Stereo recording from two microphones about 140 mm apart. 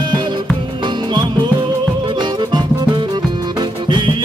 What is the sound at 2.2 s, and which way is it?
Music, 35° right (ahead or behind).